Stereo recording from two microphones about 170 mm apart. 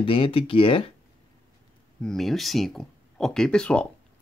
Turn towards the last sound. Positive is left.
turn(degrees=5)  # may be behind; listen again after turning